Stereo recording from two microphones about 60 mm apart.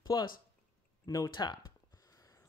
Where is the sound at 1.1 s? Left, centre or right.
Left.